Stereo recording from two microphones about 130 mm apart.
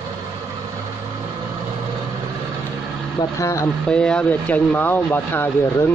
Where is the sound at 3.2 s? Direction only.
25° left (ahead or behind).